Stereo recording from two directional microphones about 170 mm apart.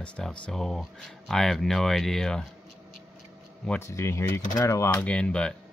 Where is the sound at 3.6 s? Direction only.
15° left (ahead or behind).